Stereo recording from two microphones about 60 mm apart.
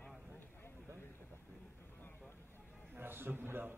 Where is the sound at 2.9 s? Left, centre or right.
Right.